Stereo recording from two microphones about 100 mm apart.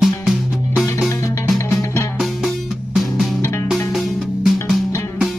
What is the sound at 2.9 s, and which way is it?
Music, centre (ahead or behind).